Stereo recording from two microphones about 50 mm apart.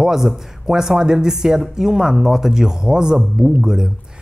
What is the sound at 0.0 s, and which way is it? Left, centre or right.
Speech, centre.